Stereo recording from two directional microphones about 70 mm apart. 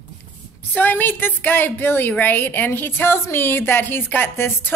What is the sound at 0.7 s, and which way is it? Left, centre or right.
A woman's voice, left.